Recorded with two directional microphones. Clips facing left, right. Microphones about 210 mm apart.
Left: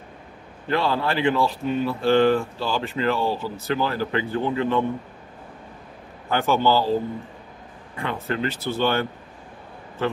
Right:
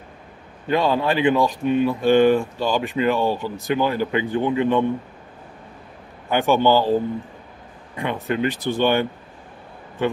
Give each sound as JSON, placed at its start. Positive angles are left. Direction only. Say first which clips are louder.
{"t": 0.7, "sound": "speech", "louder": "right 3 dB", "side_deg": -15}
{"t": 6.3, "sound": "speech", "louder": "right 3 dB", "side_deg": -15}